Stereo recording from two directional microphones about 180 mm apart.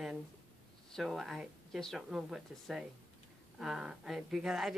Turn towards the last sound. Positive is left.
turn(degrees=-5)  # may be behind; listen again after turning